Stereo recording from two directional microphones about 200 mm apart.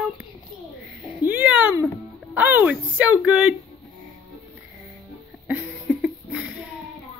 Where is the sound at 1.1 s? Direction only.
10° right (ahead or behind).